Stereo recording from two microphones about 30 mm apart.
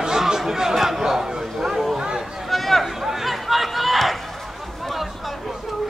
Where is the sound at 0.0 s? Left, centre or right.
Centre.